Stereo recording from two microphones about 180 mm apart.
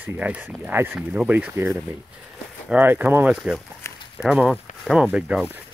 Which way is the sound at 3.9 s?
15° left (ahead or behind).